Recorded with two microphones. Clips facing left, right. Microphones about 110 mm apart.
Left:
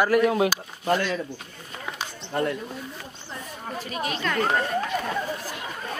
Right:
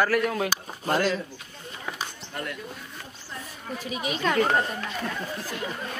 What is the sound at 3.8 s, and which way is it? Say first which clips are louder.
Speech: right 1 dB; 5° right (ahead or behind).